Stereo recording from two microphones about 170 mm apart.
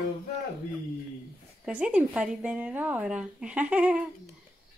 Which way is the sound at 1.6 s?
5° right (ahead or behind).